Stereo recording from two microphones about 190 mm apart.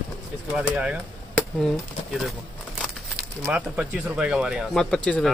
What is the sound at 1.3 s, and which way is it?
Speech, 5° left (ahead or behind).